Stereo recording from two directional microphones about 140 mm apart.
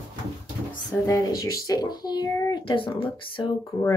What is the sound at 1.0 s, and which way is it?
Speech, 25° left (ahead or behind).